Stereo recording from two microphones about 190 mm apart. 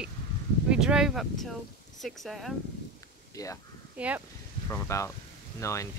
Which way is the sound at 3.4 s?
20° left (ahead or behind).